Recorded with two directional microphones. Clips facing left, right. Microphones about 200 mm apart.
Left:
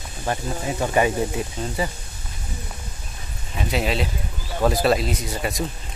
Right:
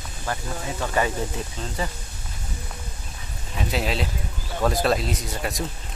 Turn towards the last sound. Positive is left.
turn(degrees=0)  # may be behind; listen again after turning